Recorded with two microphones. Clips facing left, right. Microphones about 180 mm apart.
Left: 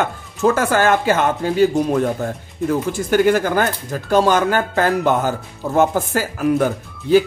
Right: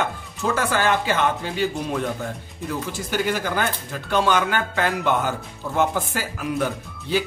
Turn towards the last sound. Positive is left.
turn(degrees=45)  # may be behind; listen again after turning